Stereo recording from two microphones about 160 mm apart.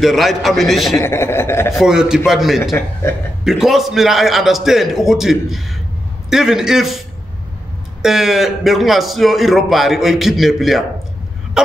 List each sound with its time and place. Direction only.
0.0 s a man's voice: centre (ahead or behind)
0.9 s speech: 15° left (ahead or behind)
1.8 s a man's voice: 5° right (ahead or behind)
2.7 s speech: 15° left (ahead or behind)
3.4 s a man's voice: centre (ahead or behind)
8.0 s a man's voice: centre (ahead or behind)
11.6 s throat clearing: 5° right (ahead or behind)